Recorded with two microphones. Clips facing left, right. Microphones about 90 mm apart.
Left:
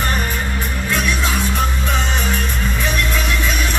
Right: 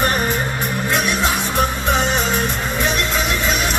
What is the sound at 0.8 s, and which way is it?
Music, 20° right (ahead or behind).